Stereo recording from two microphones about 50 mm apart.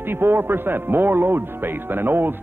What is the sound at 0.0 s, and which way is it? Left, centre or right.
Speech, right.